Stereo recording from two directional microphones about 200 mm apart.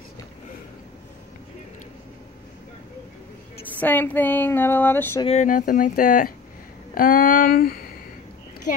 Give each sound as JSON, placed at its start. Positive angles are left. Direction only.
{"t": 3.6, "sound": "speech", "side_deg": 10}
{"t": 5.2, "sound": "speech", "side_deg": 35}